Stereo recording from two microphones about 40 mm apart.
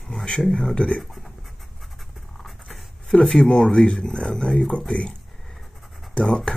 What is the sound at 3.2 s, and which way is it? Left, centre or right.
Speech, centre.